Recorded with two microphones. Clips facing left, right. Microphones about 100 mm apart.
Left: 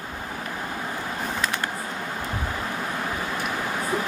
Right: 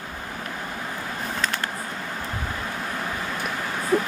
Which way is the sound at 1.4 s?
15° left (ahead or behind).